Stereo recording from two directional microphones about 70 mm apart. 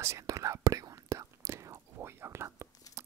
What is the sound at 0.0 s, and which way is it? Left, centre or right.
Whispering, right.